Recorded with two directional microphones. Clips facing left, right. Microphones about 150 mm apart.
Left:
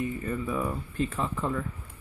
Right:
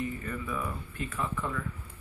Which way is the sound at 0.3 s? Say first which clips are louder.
Left 5 dB; 35° left (ahead or behind).